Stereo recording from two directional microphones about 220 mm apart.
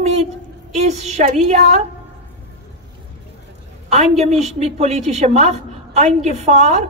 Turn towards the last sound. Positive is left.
turn(degrees=-30)  # may be behind; listen again after turning